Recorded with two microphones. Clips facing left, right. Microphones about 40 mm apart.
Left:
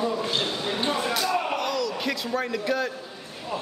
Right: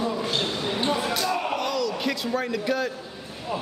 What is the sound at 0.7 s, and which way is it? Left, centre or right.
Speech, centre.